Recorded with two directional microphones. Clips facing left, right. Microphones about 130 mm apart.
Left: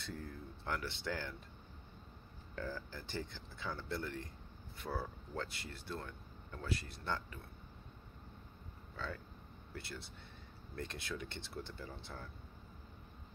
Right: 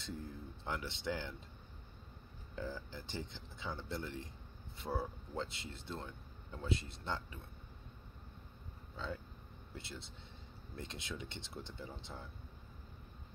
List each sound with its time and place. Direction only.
0.0 s speech: 20° right (ahead or behind)
2.5 s speech: 20° right (ahead or behind)
8.9 s speech: 20° right (ahead or behind)